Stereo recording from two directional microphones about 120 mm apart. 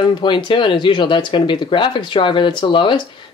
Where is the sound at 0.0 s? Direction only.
40° left (ahead or behind).